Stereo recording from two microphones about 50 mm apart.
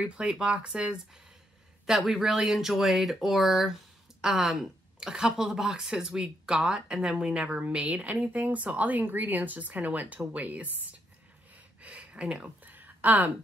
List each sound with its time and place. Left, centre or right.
0.0 s speech: right
1.9 s speech: centre
12.6 s a sound: right